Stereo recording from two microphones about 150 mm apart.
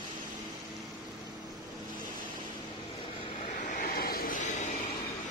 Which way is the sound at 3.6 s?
70° left (ahead or behind).